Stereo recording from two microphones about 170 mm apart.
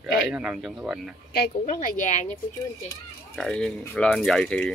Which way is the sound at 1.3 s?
60° left (ahead or behind).